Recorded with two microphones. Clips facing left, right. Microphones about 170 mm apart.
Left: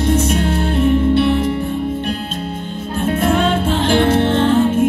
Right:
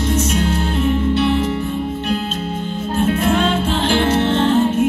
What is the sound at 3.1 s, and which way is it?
Music, 50° left (ahead or behind).